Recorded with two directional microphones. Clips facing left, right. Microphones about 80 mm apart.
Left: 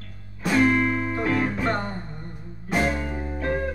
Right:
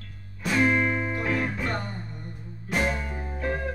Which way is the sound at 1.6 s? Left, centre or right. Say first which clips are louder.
Left 5 dB; left.